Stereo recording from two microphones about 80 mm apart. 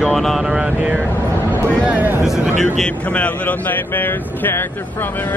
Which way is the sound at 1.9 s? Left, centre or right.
Right.